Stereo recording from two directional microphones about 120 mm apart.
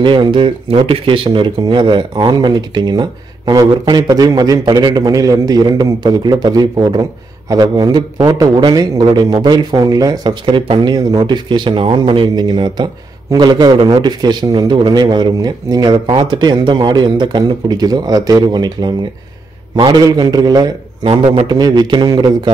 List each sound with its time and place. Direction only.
0.0 s a man's voice: 40° right (ahead or behind)